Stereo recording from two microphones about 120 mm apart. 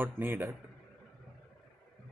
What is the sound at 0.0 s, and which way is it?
Speech, 15° right (ahead or behind).